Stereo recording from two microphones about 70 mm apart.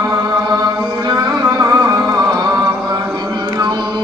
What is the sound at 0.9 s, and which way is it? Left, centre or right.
Carnatic music, right.